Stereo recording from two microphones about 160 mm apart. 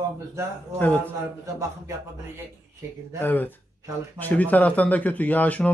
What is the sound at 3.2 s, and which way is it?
A man's voice, 10° left (ahead or behind).